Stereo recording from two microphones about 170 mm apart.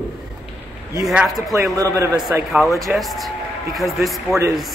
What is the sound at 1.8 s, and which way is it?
Speech, 20° right (ahead or behind).